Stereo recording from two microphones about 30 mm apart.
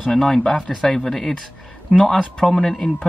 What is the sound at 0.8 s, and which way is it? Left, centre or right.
Speech, centre.